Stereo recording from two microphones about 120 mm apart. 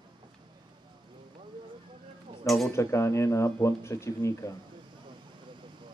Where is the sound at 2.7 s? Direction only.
20° left (ahead or behind).